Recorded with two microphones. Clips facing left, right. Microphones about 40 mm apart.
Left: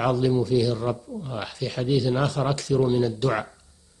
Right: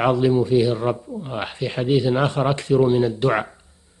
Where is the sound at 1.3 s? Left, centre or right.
Right.